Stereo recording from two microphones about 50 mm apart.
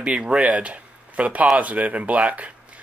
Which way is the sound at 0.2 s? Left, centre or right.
Centre.